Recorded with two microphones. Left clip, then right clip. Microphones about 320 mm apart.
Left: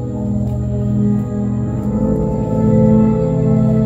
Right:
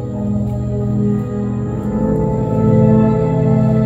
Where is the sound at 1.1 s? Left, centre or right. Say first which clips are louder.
Even; right.